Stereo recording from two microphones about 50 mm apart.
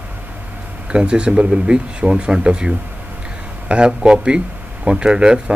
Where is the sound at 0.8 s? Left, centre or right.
Centre.